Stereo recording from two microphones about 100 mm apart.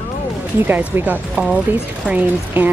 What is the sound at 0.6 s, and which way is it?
Speech, 15° right (ahead or behind).